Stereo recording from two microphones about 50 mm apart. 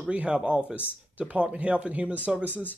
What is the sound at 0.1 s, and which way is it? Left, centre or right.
Speech, right.